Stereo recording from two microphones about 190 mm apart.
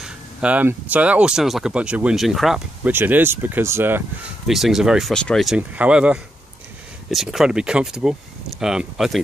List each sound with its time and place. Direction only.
0.0 s speech: 5° right (ahead or behind)